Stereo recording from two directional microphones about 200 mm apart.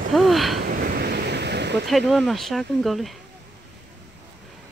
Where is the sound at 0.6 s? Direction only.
50° right (ahead or behind).